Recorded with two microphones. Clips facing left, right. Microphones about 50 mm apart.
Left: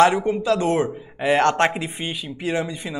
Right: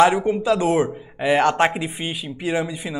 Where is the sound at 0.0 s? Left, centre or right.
Centre.